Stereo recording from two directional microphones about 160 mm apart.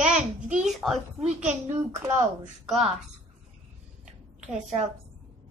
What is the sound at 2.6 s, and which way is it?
Child singing, centre (ahead or behind).